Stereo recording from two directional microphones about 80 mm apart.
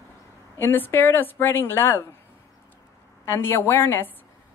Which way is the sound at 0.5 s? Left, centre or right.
Left.